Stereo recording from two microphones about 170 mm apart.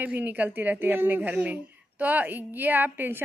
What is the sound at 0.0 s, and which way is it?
Speech, 10° right (ahead or behind).